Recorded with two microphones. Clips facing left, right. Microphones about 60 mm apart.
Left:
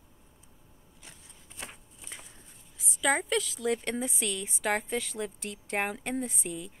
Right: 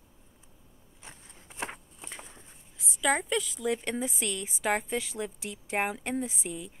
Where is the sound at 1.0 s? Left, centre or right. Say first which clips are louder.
Right 4 dB; right.